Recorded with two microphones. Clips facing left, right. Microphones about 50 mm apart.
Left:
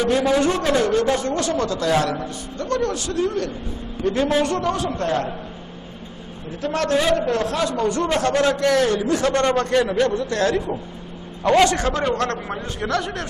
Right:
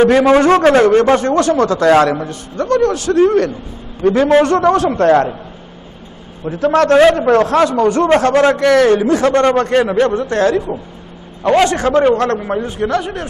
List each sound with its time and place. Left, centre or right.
0.0 s a man's voice: right
6.6 s a man's voice: right
8.6 s a man's voice: right
8.9 s a man's voice: right
10.7 s a man's voice: right
12.4 s a man's voice: centre